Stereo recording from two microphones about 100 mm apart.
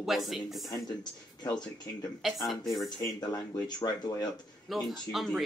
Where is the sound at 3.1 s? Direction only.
45° left (ahead or behind).